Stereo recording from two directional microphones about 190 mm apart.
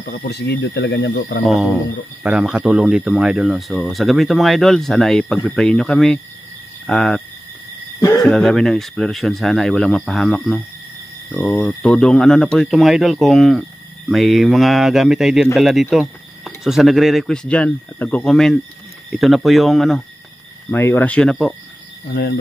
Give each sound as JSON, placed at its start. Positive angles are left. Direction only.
{"t": 0.0, "sound": "speech", "side_deg": 60}
{"t": 1.4, "sound": "speech", "side_deg": 0}
{"t": 8.2, "sound": "speech", "side_deg": 0}
{"t": 20.7, "sound": "speech", "side_deg": 10}